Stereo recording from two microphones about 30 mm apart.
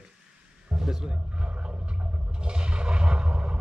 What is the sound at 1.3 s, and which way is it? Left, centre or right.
Toilet flush, right.